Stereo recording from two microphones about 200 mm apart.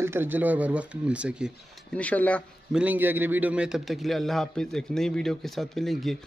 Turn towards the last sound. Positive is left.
turn(degrees=0)  # may be behind; listen again after turning